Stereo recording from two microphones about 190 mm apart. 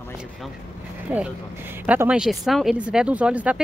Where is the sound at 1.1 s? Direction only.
5° right (ahead or behind).